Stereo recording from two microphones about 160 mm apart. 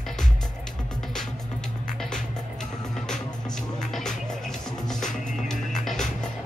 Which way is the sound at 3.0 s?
5° left (ahead or behind).